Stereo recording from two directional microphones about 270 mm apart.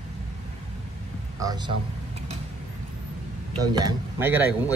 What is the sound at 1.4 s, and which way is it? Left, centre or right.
Speech, centre.